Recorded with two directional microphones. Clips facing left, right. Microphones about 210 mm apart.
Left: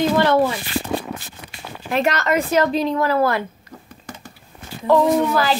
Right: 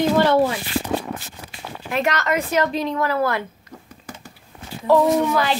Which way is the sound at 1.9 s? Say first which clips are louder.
Left 2 dB; 30° left (ahead or behind).